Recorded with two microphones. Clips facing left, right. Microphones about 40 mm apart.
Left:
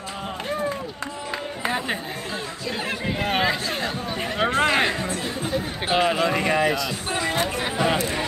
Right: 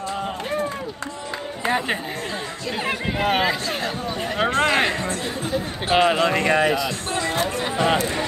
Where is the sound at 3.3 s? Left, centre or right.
Centre.